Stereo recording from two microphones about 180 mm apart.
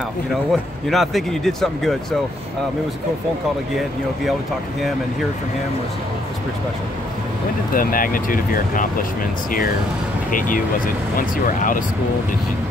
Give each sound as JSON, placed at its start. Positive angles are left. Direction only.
{"t": 0.5, "sound": "speech", "side_deg": 0}
{"t": 7.7, "sound": "speech", "side_deg": 50}
{"t": 11.1, "sound": "speech", "side_deg": 45}